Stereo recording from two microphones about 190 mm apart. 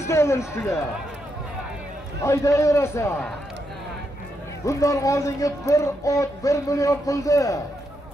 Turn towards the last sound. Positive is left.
turn(degrees=15)  # may be behind; listen again after turning